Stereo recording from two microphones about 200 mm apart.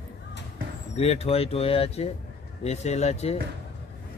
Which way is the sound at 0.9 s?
30° left (ahead or behind).